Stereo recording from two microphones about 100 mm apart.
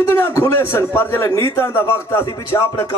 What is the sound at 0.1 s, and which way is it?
A man's voice, 25° left (ahead or behind).